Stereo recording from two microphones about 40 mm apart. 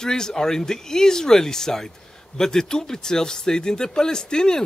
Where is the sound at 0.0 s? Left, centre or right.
Centre.